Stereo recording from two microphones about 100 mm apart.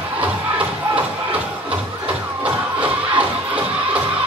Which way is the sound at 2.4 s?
15° right (ahead or behind).